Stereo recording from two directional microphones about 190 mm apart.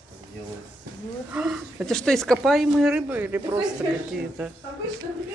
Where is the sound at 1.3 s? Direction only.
5° right (ahead or behind).